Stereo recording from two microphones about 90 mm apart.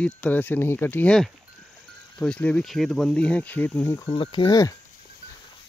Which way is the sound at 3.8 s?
30° left (ahead or behind).